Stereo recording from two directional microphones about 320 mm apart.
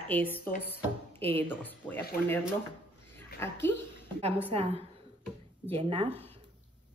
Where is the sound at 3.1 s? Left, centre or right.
Centre.